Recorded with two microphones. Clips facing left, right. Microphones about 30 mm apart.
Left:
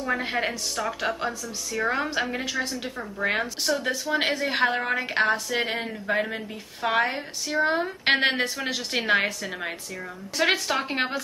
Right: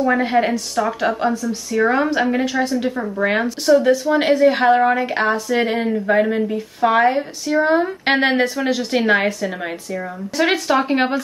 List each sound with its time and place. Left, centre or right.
0.0 s a woman's voice: centre